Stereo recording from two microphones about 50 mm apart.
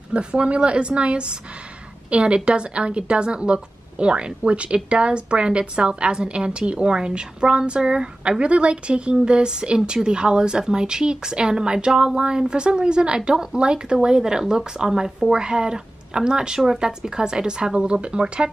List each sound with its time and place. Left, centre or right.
0.1 s a woman's voice: right